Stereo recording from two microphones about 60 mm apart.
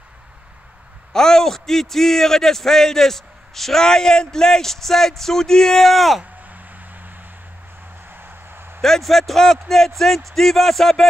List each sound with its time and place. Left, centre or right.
1.1 s a man's voice: centre
6.4 s a sound: right
8.1 s vehicle: right
8.8 s speech: centre